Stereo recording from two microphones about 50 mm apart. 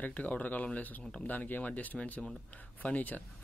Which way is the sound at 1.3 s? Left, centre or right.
Left.